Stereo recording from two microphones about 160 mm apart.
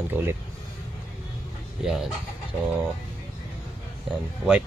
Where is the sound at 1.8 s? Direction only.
Centre (ahead or behind).